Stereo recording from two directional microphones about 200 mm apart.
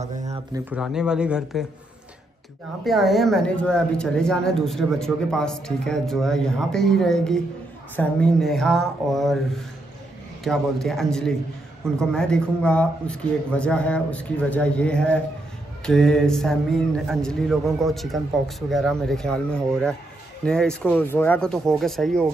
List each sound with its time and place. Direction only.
0.2 s speech: 15° right (ahead or behind)
0.7 s speech: 5° right (ahead or behind)
2.8 s speech: centre (ahead or behind)
10.4 s speech: centre (ahead or behind)